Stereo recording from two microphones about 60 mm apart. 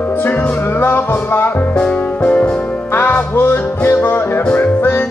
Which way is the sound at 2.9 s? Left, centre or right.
Left.